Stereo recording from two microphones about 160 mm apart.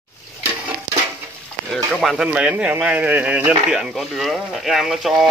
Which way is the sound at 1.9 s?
Centre (ahead or behind).